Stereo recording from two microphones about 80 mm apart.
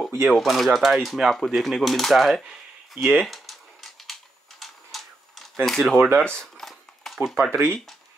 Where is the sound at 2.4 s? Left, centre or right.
Centre.